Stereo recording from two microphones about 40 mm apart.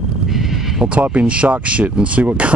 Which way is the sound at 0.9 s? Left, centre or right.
Right.